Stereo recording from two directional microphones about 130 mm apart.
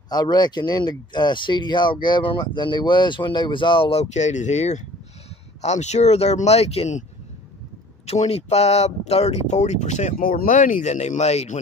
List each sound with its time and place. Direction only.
0.1 s speech: 35° left (ahead or behind); by 7.1 s 60° left (ahead or behind)
8.1 s speech: 55° left (ahead or behind)